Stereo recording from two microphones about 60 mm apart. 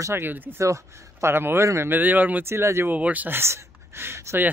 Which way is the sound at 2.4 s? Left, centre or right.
Right.